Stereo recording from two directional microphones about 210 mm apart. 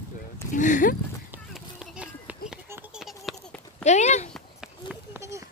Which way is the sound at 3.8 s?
35° left (ahead or behind).